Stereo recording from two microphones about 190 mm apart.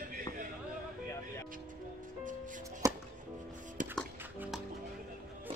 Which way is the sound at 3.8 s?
40° right (ahead or behind).